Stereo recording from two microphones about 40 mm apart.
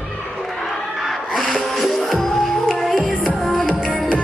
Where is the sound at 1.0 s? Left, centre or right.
Centre.